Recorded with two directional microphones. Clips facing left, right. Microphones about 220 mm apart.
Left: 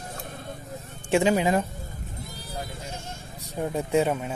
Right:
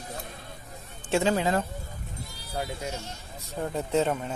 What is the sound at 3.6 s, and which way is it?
Speech, 15° left (ahead or behind).